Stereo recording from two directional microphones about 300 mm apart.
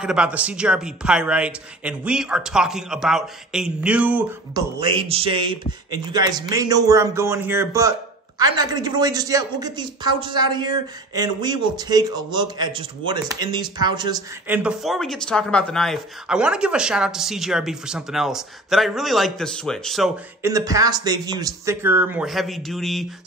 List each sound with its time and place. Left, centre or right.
0.0 s a man's voice: centre
4.8 s a man's voice: centre